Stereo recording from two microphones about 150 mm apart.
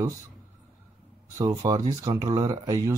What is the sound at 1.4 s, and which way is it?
Speech, 25° right (ahead or behind).